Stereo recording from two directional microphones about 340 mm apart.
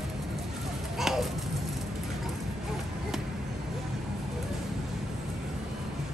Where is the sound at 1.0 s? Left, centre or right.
Centre.